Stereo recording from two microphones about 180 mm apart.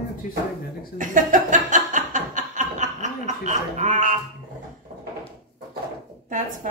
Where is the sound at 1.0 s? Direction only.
45° right (ahead or behind).